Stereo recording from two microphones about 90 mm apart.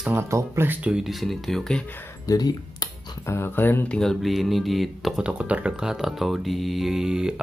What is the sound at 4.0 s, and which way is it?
Mantra, centre (ahead or behind).